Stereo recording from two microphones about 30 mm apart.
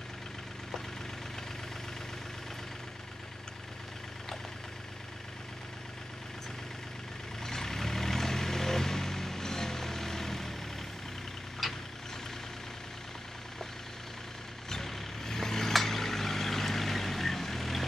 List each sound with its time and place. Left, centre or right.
7.4 s vehicle: centre
11.6 s vehicle: centre
14.7 s vehicle: centre
15.7 s a sound: centre